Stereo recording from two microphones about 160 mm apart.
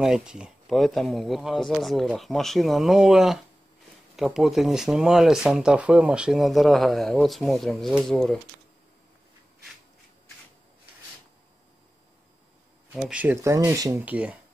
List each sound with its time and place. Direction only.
0.0 s speech: 5° right (ahead or behind)
12.9 s speech: 5° right (ahead or behind)